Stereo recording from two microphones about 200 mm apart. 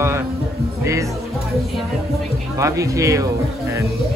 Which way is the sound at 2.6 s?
15° right (ahead or behind).